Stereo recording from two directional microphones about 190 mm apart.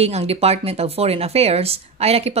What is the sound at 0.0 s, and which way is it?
Speech, 35° right (ahead or behind).